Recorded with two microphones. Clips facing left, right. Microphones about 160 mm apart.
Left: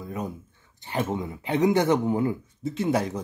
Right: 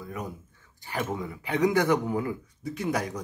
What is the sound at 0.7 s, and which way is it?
Speech, 25° left (ahead or behind).